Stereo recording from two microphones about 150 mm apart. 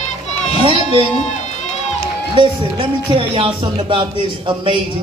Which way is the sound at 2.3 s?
35° right (ahead or behind).